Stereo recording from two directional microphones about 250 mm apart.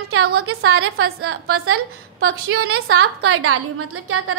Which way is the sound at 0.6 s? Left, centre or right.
Right.